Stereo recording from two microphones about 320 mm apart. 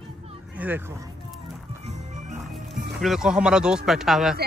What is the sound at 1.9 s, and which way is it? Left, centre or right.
Music, right.